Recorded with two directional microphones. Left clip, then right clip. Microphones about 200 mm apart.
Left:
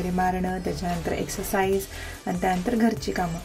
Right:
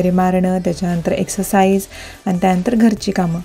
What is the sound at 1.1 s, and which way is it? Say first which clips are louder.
A woman's voice: right 13 dB; 40° right (ahead or behind).